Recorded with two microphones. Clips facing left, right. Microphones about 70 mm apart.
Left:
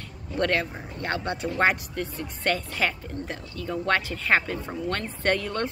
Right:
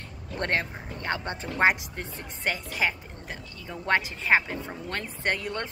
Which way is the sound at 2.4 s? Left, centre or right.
Centre.